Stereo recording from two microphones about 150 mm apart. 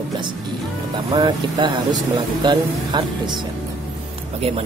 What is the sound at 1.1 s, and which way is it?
Speech, 30° right (ahead or behind).